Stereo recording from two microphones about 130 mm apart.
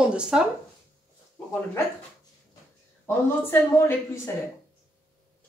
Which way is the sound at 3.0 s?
15° left (ahead or behind).